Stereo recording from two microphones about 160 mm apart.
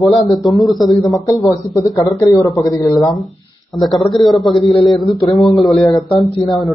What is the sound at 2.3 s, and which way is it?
Speech, 20° left (ahead or behind).